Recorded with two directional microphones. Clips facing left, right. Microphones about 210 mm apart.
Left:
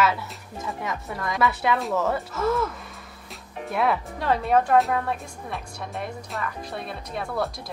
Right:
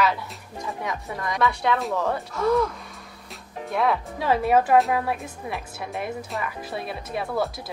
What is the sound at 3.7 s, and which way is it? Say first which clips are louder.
Speech: right 1 dB; centre (ahead or behind).